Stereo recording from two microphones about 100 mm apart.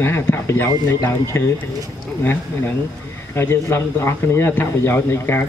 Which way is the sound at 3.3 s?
25° left (ahead or behind).